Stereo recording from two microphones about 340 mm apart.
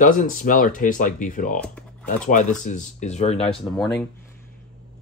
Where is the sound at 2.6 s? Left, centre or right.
Left.